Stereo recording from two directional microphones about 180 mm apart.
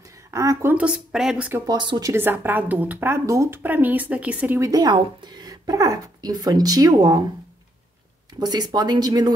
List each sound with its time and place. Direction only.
0.3 s speech: 15° right (ahead or behind)
1.7 s speech: 25° right (ahead or behind)
8.4 s speech: 20° right (ahead or behind)